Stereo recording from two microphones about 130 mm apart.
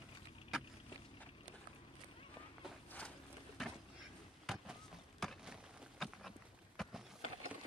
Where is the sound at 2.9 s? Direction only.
10° left (ahead or behind).